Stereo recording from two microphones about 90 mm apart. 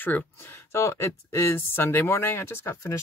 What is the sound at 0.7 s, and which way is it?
Speech, 30° left (ahead or behind).